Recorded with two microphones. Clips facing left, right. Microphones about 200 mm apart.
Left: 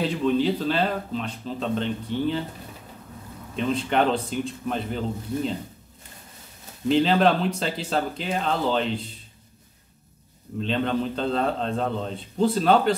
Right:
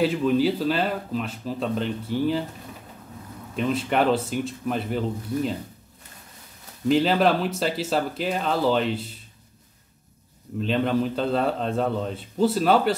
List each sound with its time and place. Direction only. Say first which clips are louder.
0.2 s speech: right 1 dB; 5° right (ahead or behind)
3.5 s speech: even; 5° right (ahead or behind)
6.9 s speech: even; 5° right (ahead or behind)
10.6 s a man's voice: right 2 dB; 5° right (ahead or behind)